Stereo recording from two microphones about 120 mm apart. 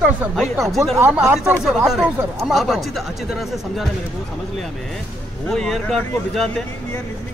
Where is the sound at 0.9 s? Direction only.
20° right (ahead or behind).